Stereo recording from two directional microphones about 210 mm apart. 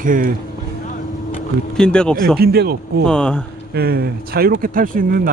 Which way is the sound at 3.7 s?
45° right (ahead or behind).